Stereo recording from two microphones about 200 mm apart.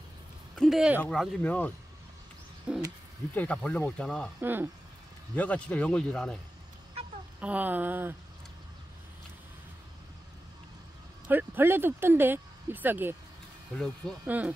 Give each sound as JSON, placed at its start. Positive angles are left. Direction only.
{"t": 0.6, "sound": "speech", "side_deg": 0}
{"t": 2.7, "sound": "bird", "side_deg": -5}
{"t": 3.3, "sound": "speech", "side_deg": 5}
{"t": 4.4, "sound": "speech", "side_deg": -10}
{"t": 5.3, "sound": "speech", "side_deg": 5}
{"t": 7.3, "sound": "speech", "side_deg": -5}
{"t": 11.2, "sound": "speech", "side_deg": -10}
{"t": 14.2, "sound": "speech", "side_deg": -10}